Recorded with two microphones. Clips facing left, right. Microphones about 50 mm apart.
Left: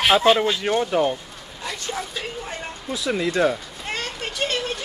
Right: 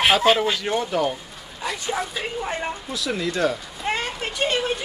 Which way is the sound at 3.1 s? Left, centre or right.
Centre.